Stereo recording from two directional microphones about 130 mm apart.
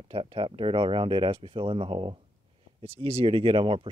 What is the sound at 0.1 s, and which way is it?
Speech, 45° right (ahead or behind).